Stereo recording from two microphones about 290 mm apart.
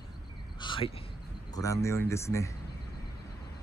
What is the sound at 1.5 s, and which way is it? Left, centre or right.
Speech, centre.